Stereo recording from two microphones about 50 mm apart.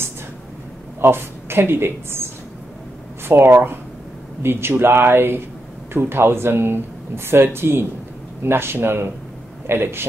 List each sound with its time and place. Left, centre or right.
1.0 s speech: right
3.3 s speech: right